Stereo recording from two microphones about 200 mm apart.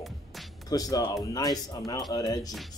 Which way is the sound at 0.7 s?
20° left (ahead or behind).